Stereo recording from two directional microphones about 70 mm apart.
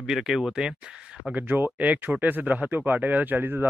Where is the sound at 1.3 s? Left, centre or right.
Right.